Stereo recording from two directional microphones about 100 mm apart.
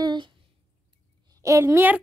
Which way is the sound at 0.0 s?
45° right (ahead or behind).